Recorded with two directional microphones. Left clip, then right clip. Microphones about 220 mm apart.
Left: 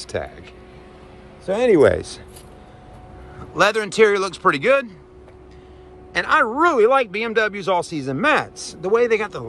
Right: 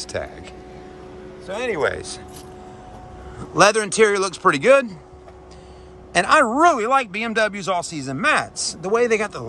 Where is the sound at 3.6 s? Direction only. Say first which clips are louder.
Right 1 dB; 10° right (ahead or behind).